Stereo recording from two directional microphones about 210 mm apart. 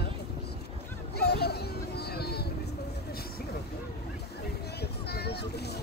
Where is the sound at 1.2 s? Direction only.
50° left (ahead or behind).